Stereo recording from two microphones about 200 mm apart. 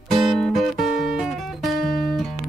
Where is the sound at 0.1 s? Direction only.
Centre (ahead or behind).